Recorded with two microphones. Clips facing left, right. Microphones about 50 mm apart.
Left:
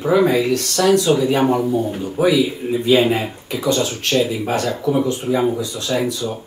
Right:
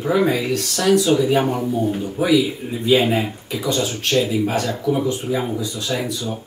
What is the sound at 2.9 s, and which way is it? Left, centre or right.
Speech, centre.